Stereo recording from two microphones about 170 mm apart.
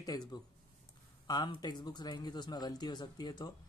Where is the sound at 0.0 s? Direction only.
25° left (ahead or behind).